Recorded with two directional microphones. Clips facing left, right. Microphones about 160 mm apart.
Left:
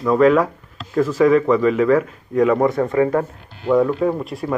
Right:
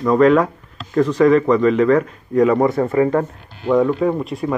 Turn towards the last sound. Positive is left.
turn(degrees=0)  # may be behind; listen again after turning